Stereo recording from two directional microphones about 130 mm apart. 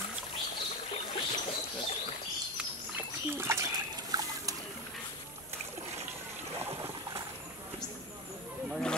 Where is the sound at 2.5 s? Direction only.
15° right (ahead or behind).